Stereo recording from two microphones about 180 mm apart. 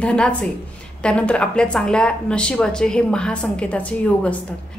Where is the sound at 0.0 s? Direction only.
5° left (ahead or behind).